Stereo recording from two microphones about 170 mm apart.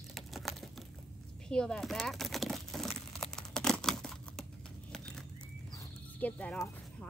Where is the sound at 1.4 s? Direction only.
5° left (ahead or behind).